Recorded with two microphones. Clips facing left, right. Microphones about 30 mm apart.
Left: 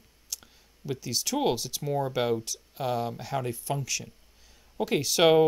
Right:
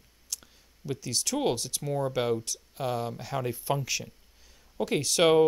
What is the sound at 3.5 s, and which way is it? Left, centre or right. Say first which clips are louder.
Speech: right 2 dB; centre.